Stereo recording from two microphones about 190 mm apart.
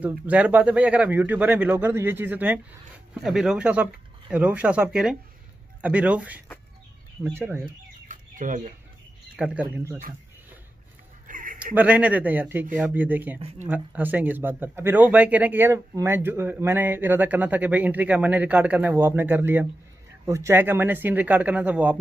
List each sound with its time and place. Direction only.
0.0 s a man's voice: 10° right (ahead or behind)
8.1 s chicken: 45° right (ahead or behind)
9.4 s a man's voice: 5° right (ahead or behind)
11.2 s a sound: 45° right (ahead or behind)
11.6 s a man's voice: 10° right (ahead or behind)